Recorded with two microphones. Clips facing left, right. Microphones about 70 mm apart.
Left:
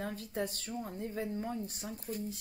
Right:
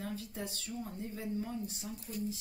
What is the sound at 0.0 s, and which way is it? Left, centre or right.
A woman's voice, left.